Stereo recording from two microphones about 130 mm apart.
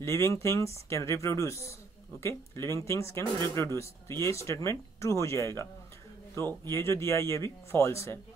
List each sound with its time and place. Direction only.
0.0 s speech: 20° left (ahead or behind)